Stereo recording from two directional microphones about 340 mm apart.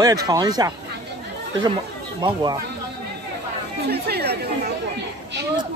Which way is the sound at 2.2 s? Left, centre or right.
Centre.